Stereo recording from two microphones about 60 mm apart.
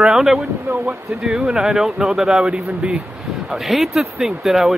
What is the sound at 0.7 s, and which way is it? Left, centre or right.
Speech, right.